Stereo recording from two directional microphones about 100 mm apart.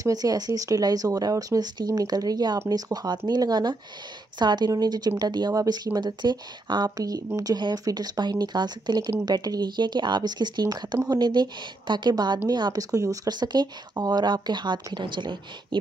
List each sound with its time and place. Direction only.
0.0 s speech: 40° right (ahead or behind)
7.5 s speech: 45° right (ahead or behind)